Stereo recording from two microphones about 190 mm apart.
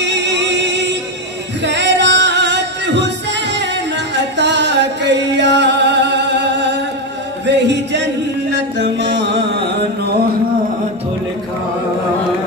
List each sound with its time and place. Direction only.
0.0 s music: 70° right (ahead or behind)